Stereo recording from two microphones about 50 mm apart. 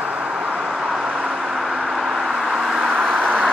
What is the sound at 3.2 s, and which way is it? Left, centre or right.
Vehicle, right.